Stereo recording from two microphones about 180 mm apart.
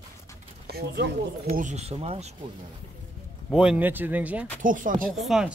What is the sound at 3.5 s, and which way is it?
Speech, 5° right (ahead or behind).